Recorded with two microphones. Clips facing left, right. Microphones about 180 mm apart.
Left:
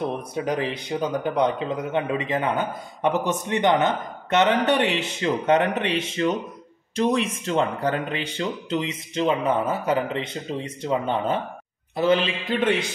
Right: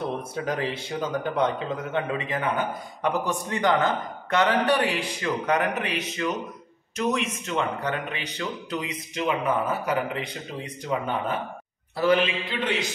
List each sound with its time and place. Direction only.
0.3 s a man's voice: 20° left (ahead or behind)
12.4 s a man's voice: 50° left (ahead or behind)